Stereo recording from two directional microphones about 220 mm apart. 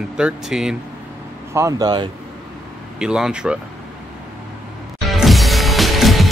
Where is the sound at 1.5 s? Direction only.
15° right (ahead or behind).